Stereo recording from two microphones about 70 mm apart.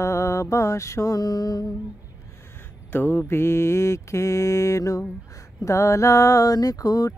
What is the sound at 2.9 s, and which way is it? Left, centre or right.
Mantra, left.